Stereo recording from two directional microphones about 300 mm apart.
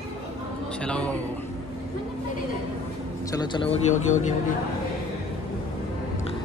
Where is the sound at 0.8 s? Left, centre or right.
Centre.